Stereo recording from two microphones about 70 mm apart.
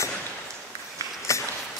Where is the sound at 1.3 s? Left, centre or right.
Left.